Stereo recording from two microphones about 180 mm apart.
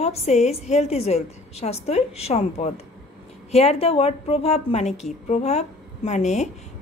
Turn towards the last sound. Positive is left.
turn(degrees=40)  # may be behind; listen again after turning